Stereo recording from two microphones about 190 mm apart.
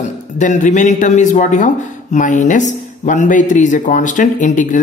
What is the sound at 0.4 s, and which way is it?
A man's voice, 40° left (ahead or behind).